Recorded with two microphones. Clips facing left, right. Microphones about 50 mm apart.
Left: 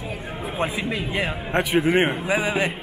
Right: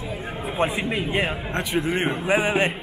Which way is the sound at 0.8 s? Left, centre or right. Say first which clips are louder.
Right 1 dB; right.